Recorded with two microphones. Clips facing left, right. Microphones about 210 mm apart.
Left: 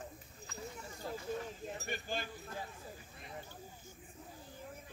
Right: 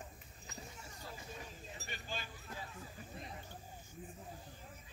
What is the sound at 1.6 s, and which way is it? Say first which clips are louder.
Chink: left 8 dB; 55° left (ahead or behind).